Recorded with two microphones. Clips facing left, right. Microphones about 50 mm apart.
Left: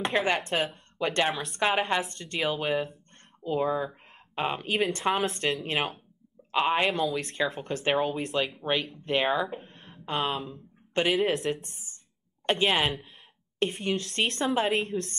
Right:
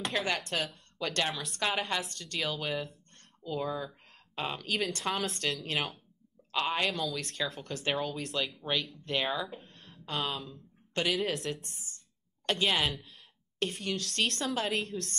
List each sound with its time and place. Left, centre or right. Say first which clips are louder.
0.0 s a woman's voice: left 6 dB; left
4.6 s speech: left 5 dB; centre
4.9 s a woman's voice: left 6 dB; left
6.5 s a woman's voice: left 6 dB; centre
8.4 s a woman's voice: left 4 dB; left
9.7 s a sound: left 6 dB; left
11.1 s speech: left 6 dB; centre
11.6 s a woman's voice: left 1 dB; left
14.8 s speech: left 6 dB; centre